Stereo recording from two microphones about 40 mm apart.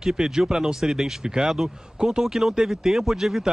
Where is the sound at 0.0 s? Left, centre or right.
Centre.